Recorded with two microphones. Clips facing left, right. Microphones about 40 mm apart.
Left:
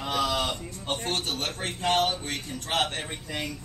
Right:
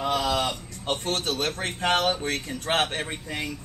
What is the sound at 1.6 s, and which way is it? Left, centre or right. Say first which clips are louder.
Speech: left 1 dB; right.